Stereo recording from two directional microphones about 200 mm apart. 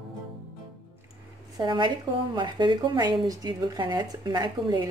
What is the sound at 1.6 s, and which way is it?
A woman's voice, 20° right (ahead or behind).